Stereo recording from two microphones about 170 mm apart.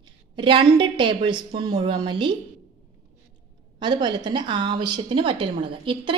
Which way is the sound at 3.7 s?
25° right (ahead or behind).